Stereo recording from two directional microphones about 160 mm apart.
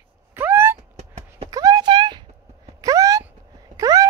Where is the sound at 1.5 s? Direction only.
25° right (ahead or behind).